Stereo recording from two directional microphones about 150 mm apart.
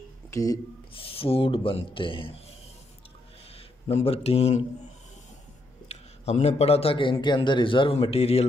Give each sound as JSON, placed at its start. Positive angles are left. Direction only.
{"t": 0.3, "sound": "speech", "side_deg": 20}
{"t": 1.0, "sound": "a man's voice", "side_deg": 40}
{"t": 3.5, "sound": "speech", "side_deg": 40}
{"t": 5.9, "sound": "a man's voice", "side_deg": 45}